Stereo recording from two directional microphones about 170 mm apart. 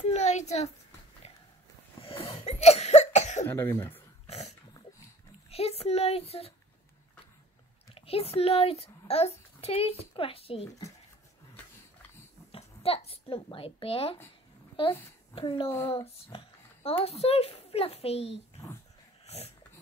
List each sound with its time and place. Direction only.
0.1 s a sound: 45° left (ahead or behind)
1.2 s walk: 40° left (ahead or behind)
2.0 s cough: 35° left (ahead or behind)
3.4 s speech: 15° left (ahead or behind)
4.3 s dog: 40° left (ahead or behind)
5.5 s a child's voice: 35° left (ahead or behind)
7.9 s a child's voice: 35° left (ahead or behind)
12.5 s a child's voice: 35° left (ahead or behind)
19.2 s dog: 40° left (ahead or behind)